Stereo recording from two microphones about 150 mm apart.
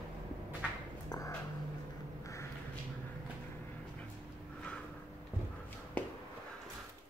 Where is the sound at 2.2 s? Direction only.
20° left (ahead or behind).